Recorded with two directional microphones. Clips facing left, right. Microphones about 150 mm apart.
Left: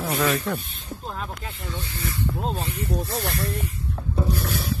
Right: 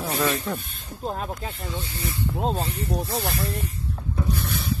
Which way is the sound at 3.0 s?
Centre (ahead or behind).